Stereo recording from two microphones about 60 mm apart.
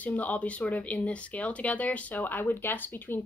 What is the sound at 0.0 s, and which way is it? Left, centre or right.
Speech, left.